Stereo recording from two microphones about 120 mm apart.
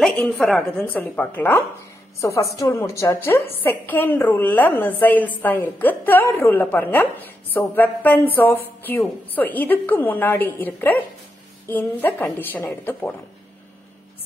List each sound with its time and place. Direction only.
0.3 s a woman's voice: centre (ahead or behind)
2.1 s a woman's voice: 25° left (ahead or behind)